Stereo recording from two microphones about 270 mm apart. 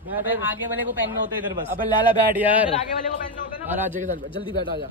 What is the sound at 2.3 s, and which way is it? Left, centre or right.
Speech, centre.